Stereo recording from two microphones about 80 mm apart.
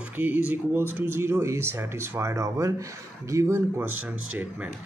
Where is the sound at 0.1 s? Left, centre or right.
Right.